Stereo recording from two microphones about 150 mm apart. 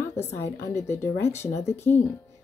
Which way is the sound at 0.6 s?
20° left (ahead or behind).